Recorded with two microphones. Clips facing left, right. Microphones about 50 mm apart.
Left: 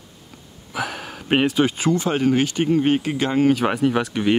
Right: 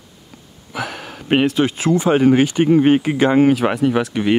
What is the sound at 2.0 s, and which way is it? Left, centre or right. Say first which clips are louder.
Speech: right 9 dB; right.